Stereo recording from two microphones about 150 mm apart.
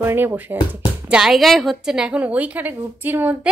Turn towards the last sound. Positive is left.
turn(degrees=-10)  # may be behind; listen again after turning